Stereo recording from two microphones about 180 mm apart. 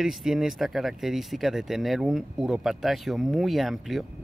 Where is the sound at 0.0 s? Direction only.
Centre (ahead or behind).